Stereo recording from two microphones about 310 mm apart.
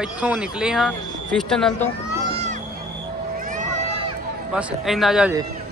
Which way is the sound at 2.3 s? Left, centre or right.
Right.